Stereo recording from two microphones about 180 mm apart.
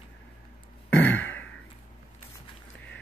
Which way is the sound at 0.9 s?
10° left (ahead or behind).